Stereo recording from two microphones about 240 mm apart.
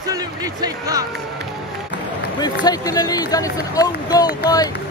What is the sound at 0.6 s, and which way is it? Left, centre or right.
Speech, centre.